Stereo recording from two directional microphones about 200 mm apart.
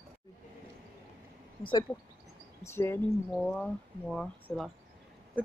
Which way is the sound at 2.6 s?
15° left (ahead or behind).